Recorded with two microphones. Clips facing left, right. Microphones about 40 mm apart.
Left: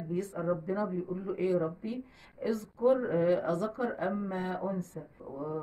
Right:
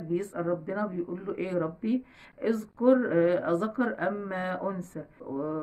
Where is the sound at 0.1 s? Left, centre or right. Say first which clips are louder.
Right 3 dB; right.